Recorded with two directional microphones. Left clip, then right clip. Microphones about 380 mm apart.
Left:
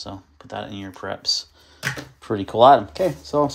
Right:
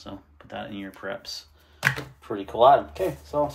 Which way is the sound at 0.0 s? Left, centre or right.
Centre.